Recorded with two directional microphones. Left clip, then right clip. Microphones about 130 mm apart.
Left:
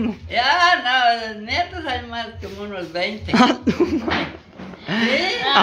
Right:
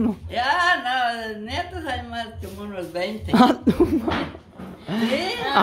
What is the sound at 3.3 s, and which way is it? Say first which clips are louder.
Speech: even; 25° right (ahead or behind).